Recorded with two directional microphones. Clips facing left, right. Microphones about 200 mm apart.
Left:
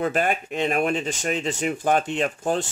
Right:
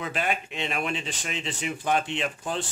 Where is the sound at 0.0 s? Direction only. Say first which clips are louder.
Left 6 dB; 45° left (ahead or behind).